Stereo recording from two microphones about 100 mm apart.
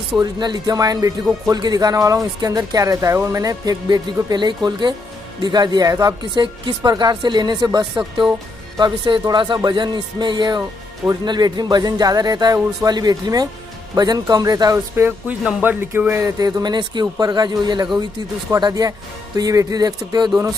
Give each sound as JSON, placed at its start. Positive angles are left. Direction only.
{"t": 0.2, "sound": "speech", "side_deg": -45}
{"t": 15.6, "sound": "speech", "side_deg": -20}
{"t": 16.3, "sound": "speech", "side_deg": -40}